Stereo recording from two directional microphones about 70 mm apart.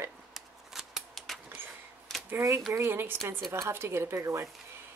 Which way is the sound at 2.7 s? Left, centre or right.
Right.